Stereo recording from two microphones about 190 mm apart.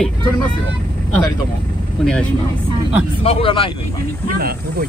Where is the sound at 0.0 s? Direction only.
5° left (ahead or behind).